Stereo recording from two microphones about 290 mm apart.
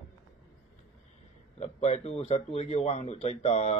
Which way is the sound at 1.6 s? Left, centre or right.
Left.